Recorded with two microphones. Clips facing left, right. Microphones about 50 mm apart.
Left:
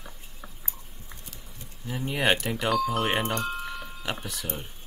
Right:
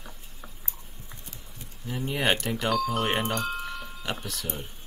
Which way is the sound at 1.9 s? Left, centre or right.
Centre.